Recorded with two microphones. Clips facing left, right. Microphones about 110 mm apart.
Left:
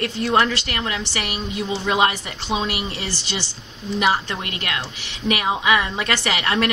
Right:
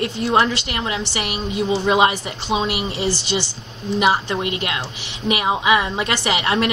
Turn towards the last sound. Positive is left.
turn(degrees=-15)  # may be behind; listen again after turning